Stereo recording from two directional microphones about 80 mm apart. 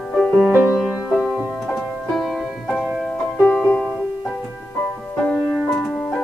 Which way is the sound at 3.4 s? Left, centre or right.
Left.